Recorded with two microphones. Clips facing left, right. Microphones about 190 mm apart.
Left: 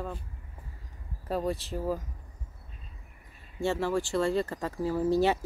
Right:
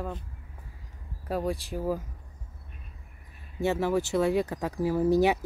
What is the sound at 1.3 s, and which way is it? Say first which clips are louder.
Speech: right 1 dB; 10° right (ahead or behind).